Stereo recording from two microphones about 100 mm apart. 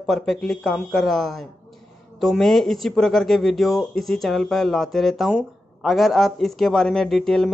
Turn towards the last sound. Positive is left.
turn(degrees=5)  # may be behind; listen again after turning